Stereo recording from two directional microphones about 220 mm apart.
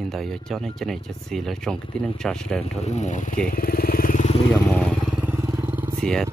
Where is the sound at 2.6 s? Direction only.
30° left (ahead or behind).